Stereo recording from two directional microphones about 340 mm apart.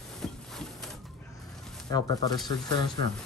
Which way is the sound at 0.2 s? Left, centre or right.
Centre.